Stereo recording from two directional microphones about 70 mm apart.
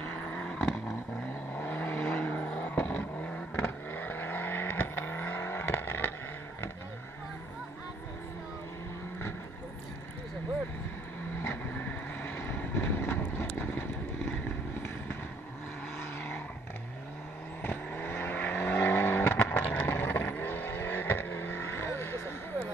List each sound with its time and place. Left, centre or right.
0.1 s vehicle: centre
1.5 s vehicle: left
1.8 s vehicle: centre
2.4 s vehicle: centre
2.7 s vehicle: left
11.4 s vehicle: left
17.6 s vehicle: left